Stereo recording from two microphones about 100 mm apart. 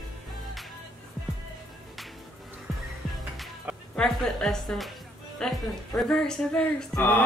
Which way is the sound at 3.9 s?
10° left (ahead or behind).